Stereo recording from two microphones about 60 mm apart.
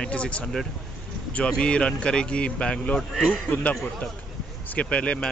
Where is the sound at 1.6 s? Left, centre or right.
Centre.